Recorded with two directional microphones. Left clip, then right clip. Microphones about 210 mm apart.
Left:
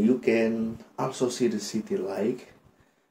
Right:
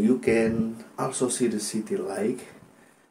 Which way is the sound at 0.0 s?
15° right (ahead or behind).